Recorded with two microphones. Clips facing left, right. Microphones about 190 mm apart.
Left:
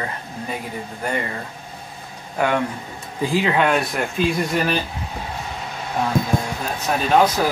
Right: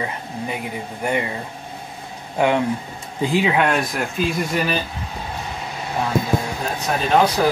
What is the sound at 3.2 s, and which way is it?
Speech, 15° right (ahead or behind).